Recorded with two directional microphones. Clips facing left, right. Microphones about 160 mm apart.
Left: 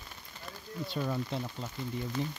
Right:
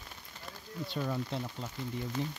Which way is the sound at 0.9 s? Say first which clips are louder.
Left 1 dB; 5° left (ahead or behind).